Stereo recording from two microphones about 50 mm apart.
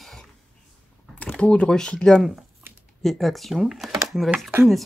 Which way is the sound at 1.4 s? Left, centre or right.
Left.